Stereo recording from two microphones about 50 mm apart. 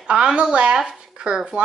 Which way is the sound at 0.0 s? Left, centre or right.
Centre.